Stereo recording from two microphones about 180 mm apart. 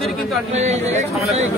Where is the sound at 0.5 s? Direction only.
40° right (ahead or behind).